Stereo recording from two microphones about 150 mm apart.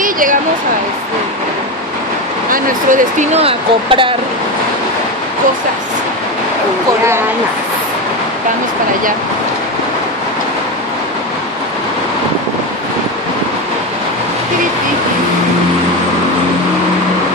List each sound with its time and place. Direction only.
0.0 s a sound: 65° right (ahead or behind)
2.5 s speech: 60° right (ahead or behind)
3.3 s speech: 35° right (ahead or behind)